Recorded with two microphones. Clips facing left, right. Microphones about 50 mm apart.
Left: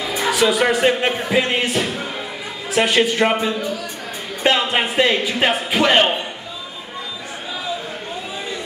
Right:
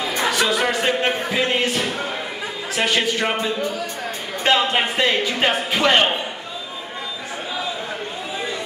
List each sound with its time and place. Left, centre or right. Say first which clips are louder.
0.1 s speech: left 3 dB; centre
4.4 s speech: left 1 dB; centre